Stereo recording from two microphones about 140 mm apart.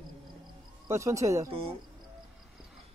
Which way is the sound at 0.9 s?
20° right (ahead or behind).